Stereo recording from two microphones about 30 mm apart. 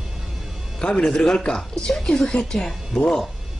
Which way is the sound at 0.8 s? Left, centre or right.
Left.